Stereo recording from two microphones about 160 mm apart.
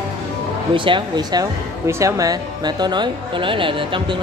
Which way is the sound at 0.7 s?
30° right (ahead or behind).